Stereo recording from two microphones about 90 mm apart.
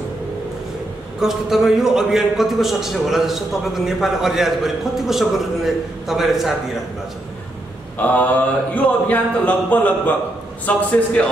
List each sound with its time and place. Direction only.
1.2 s a man's voice: 5° right (ahead or behind)
8.0 s a sound: 20° left (ahead or behind)
11.2 s speech: 15° left (ahead or behind)